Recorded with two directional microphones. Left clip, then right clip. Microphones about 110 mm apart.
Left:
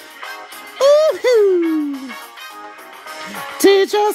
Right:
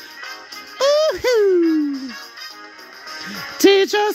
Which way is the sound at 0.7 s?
15° right (ahead or behind).